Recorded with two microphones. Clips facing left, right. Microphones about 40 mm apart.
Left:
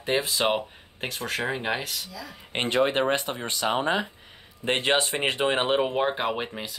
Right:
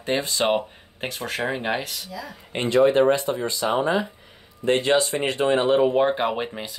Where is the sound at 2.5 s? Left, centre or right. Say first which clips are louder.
Right 5 dB; left.